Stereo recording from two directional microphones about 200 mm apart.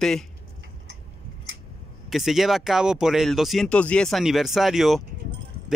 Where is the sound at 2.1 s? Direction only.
Centre (ahead or behind).